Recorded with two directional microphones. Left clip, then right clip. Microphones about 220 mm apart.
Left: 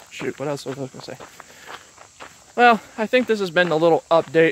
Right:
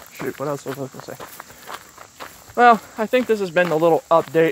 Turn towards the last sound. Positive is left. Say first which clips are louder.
# even
turn(degrees=20)  # may be behind; listen again after turning